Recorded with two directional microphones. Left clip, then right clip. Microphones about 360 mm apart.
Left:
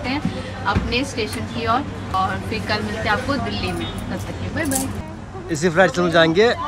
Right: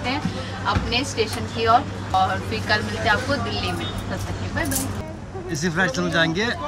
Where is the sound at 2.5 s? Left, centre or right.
Centre.